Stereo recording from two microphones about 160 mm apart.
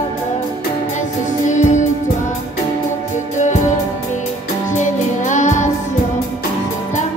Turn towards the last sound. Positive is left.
turn(degrees=50)  # may be behind; listen again after turning